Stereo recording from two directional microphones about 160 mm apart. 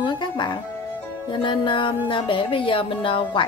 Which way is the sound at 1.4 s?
30° left (ahead or behind).